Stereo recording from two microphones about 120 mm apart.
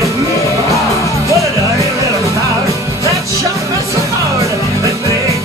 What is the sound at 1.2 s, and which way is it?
Music, 25° right (ahead or behind).